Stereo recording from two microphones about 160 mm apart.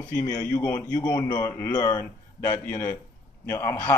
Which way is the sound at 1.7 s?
25° left (ahead or behind).